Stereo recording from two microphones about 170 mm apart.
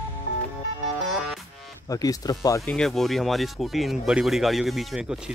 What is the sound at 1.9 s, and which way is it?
Speech, 20° left (ahead or behind).